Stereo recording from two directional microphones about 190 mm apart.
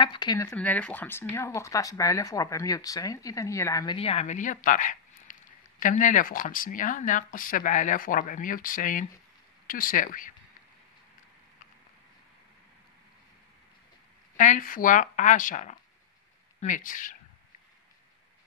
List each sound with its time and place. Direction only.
0.0 s speech: 25° left (ahead or behind)
0.6 s speech: 5° left (ahead or behind); by 10.3 s 45° left (ahead or behind)
14.3 s speech: 40° left (ahead or behind)